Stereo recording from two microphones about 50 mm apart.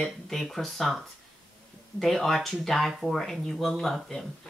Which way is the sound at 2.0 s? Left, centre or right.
Centre.